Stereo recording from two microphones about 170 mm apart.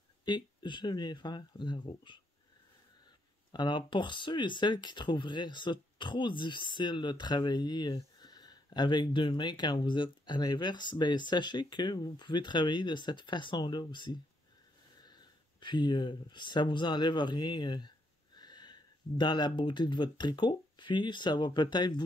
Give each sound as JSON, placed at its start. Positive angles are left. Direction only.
{"t": 0.2, "sound": "speech", "side_deg": 25}
{"t": 3.5, "sound": "speech", "side_deg": 25}